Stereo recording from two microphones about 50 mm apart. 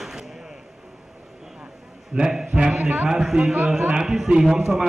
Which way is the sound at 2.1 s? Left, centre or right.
Centre.